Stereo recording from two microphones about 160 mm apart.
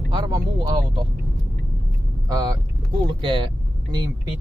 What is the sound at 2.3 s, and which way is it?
Speech, 25° right (ahead or behind).